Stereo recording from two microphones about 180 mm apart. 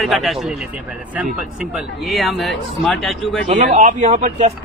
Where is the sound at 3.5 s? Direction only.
45° right (ahead or behind).